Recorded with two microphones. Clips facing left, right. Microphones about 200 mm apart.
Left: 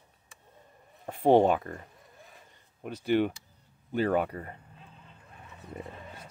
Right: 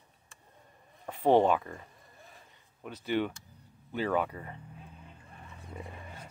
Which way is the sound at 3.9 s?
50° left (ahead or behind).